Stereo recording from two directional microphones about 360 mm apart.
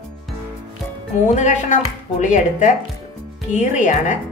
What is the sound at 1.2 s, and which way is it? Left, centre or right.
Speech, centre.